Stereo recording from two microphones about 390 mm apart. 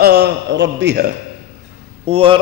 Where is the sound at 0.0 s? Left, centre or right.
Right.